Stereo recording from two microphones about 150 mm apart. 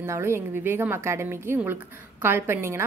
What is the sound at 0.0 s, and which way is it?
A woman's voice, 15° right (ahead or behind).